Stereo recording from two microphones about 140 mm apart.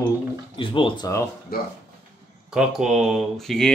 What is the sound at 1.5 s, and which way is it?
Speech, 90° left.